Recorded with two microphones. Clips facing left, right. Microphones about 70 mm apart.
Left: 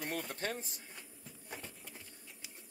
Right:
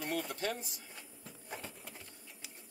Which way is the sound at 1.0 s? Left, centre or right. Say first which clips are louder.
Right 1 dB; centre.